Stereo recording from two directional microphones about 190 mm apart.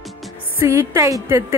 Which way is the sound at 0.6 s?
15° right (ahead or behind).